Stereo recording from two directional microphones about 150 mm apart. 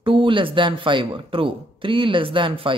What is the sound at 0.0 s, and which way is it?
Speech, 35° right (ahead or behind).